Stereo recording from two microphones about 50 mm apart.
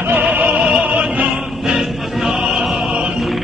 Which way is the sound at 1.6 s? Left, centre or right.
Centre.